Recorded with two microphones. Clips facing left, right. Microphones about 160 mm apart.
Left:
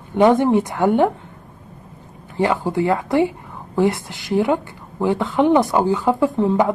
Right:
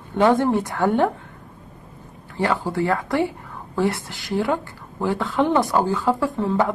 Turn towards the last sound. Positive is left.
turn(degrees=20)  # may be behind; listen again after turning